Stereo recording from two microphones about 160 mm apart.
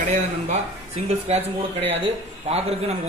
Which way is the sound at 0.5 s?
40° right (ahead or behind).